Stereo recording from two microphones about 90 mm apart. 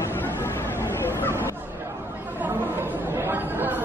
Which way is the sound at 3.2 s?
25° right (ahead or behind).